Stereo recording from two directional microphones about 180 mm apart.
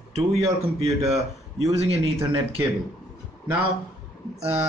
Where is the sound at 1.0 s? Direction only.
35° right (ahead or behind).